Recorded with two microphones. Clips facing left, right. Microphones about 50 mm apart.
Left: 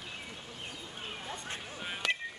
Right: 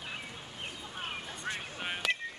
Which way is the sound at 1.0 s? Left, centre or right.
Right.